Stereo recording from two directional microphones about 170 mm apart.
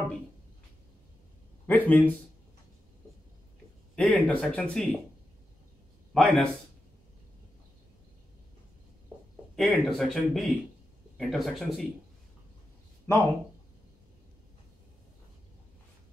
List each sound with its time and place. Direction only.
1.7 s speech: 10° left (ahead or behind)
3.9 s speech: 5° left (ahead or behind)
6.1 s speech: 5° left (ahead or behind)
9.6 s speech: centre (ahead or behind)
13.1 s speech: 20° left (ahead or behind)